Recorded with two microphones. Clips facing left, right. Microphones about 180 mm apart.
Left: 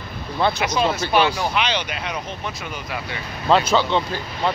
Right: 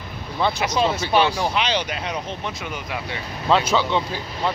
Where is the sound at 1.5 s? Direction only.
35° right (ahead or behind).